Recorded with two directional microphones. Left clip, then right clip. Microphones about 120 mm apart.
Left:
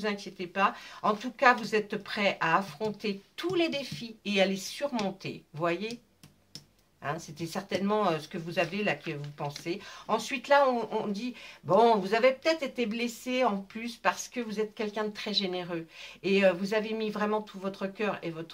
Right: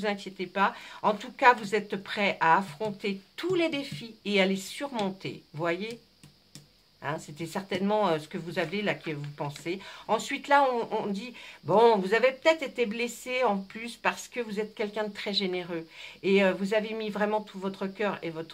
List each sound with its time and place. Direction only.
0.0 s speech: 50° right (ahead or behind)
7.0 s speech: 40° right (ahead or behind)